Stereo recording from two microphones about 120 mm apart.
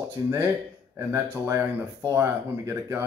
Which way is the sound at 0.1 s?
20° right (ahead or behind).